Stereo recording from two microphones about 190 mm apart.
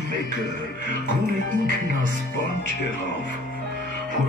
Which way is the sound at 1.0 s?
45° right (ahead or behind).